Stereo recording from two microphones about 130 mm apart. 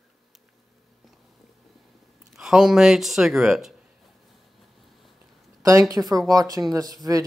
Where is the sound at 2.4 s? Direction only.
5° right (ahead or behind).